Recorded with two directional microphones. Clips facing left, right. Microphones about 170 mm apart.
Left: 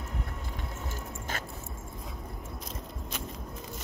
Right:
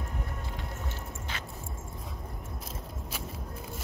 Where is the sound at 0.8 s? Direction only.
45° left (ahead or behind).